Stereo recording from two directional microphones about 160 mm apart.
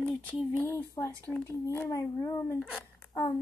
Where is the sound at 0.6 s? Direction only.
15° left (ahead or behind).